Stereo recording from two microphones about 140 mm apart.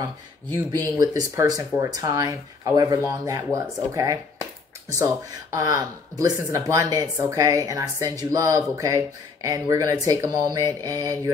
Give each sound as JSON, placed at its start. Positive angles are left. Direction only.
{"t": 0.9, "sound": "speech", "side_deg": -25}